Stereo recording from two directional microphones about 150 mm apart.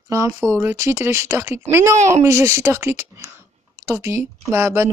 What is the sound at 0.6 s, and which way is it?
Speech, 20° right (ahead or behind).